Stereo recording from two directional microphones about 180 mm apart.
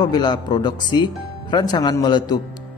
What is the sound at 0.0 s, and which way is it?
Speech, 25° left (ahead or behind).